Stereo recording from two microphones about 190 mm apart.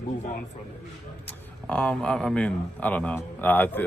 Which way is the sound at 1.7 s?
5° left (ahead or behind).